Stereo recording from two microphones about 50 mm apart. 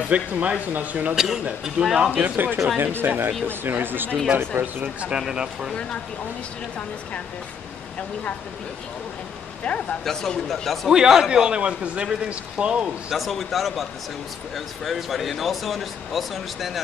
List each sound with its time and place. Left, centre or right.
0.1 s speech: right
1.1 s speech: centre
2.0 s speech: right
5.3 s speech: centre
9.6 s speech: left
10.0 s speech: centre
10.9 s speech: centre
13.1 s speech: centre
14.9 s speech: centre